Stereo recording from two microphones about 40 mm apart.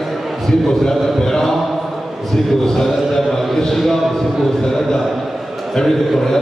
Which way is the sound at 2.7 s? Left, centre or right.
Centre.